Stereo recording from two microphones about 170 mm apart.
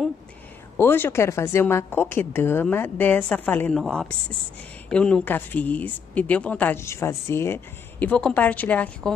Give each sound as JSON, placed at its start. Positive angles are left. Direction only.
{"t": 0.7, "sound": "speech", "side_deg": 10}